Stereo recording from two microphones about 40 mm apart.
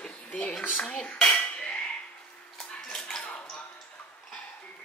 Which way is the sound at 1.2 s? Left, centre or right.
Left.